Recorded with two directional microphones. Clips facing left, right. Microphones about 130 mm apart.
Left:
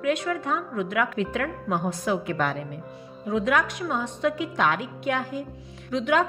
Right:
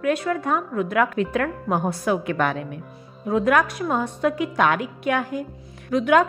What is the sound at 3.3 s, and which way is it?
A woman's voice, 55° right (ahead or behind).